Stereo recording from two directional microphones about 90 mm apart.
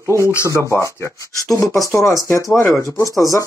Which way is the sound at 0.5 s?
35° right (ahead or behind).